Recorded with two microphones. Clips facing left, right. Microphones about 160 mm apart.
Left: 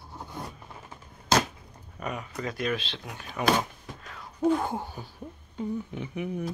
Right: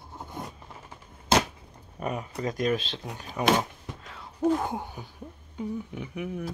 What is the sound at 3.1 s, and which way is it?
Speech, 30° right (ahead or behind).